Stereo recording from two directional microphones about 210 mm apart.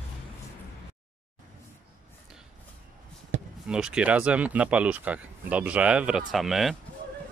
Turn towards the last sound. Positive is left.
turn(degrees=0)  # may be behind; listen again after turning